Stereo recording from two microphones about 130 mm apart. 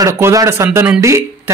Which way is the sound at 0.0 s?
25° right (ahead or behind).